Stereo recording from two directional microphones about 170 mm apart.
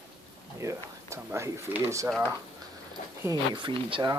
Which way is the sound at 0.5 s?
15° right (ahead or behind).